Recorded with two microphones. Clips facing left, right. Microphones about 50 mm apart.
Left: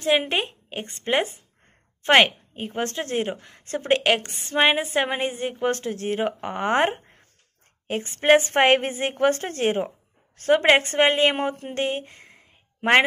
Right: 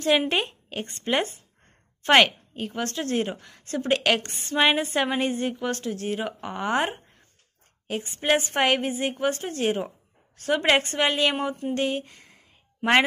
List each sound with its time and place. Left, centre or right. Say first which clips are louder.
0.0 s a woman's voice: even; centre; by 4.0 s left
4.0 s a woman's voice: left 2 dB; left
9.1 s a woman's voice: left 5 dB; left
11.3 s speech: left 1 dB; left
11.7 s a sound: even; left